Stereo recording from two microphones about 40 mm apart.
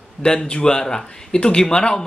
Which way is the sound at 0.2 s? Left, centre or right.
Centre.